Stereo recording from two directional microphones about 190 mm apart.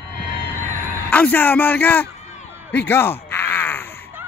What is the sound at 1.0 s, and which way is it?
A man's voice, 10° left (ahead or behind).